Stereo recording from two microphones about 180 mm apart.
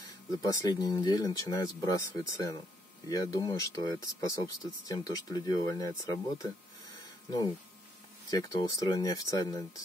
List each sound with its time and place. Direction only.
0.5 s speech: 20° left (ahead or behind)
8.3 s speech: 20° left (ahead or behind)